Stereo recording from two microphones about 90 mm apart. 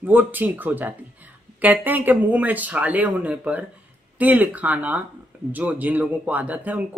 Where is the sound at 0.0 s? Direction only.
20° right (ahead or behind).